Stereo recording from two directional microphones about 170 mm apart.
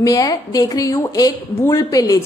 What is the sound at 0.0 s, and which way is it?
A woman's voice, 20° left (ahead or behind).